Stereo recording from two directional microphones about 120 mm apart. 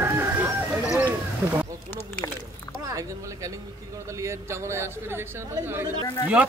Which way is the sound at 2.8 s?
30° right (ahead or behind).